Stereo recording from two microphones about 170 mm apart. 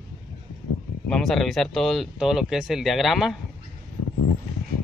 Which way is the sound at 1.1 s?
Centre (ahead or behind).